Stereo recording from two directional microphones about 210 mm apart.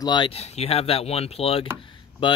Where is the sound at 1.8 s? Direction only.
25° left (ahead or behind).